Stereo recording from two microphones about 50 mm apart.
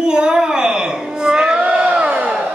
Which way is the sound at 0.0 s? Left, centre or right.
Centre.